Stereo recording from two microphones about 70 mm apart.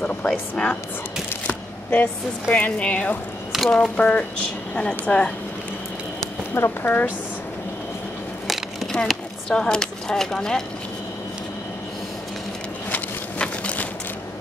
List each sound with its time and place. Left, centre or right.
0.0 s speech: centre
1.5 s speech: left
3.5 s speech: centre
6.5 s speech: left
8.5 s speech: centre
13.4 s a sound: centre